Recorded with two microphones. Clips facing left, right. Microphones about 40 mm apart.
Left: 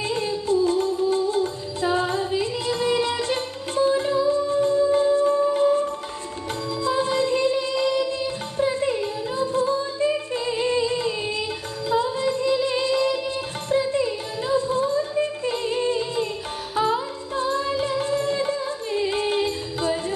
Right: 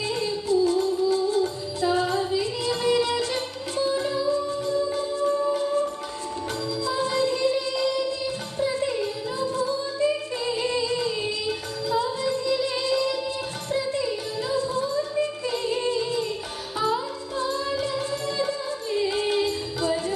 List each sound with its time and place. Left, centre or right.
0.0 s music: left
6.8 s music: left